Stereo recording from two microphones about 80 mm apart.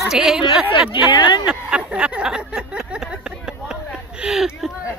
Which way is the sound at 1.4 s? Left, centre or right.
Centre.